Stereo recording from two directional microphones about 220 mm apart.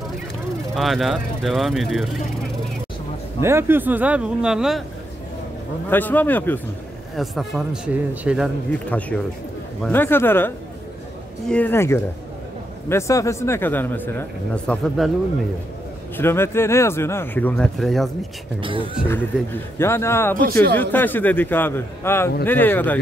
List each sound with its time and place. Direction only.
0.7 s a man's voice: centre (ahead or behind)
3.3 s speech: 10° right (ahead or behind)
5.9 s a man's voice: 10° left (ahead or behind)
8.7 s a man's voice: 5° left (ahead or behind)
16.2 s speech: 10° left (ahead or behind)
18.6 s speech: 25° right (ahead or behind)
19.0 s speech: 10° left (ahead or behind)